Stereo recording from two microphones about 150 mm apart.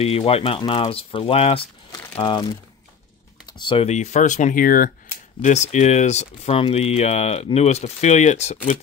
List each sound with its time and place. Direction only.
0.0 s speech: 40° left (ahead or behind)
3.5 s speech: 35° left (ahead or behind); by 4.9 s 65° left (ahead or behind)
5.4 s speech: 50° left (ahead or behind)